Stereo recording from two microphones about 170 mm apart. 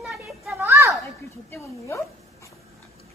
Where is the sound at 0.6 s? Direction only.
15° right (ahead or behind).